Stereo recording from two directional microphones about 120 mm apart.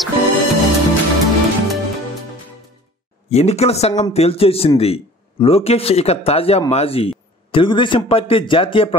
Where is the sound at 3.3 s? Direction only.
60° left (ahead or behind).